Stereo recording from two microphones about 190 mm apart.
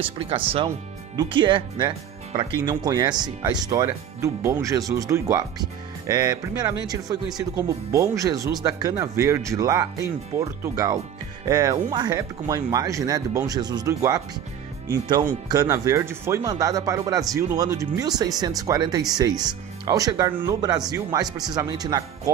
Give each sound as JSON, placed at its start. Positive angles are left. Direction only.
{"t": 0.0, "sound": "speech", "side_deg": -30}